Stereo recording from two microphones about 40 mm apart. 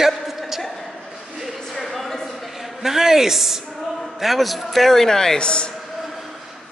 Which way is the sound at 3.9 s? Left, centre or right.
Centre.